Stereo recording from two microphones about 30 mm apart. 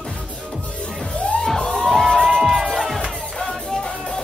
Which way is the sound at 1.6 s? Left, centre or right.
Centre.